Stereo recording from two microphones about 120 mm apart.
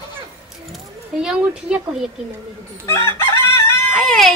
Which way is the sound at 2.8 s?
20° left (ahead or behind).